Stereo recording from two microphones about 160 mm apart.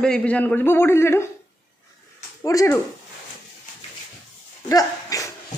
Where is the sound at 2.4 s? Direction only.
20° left (ahead or behind).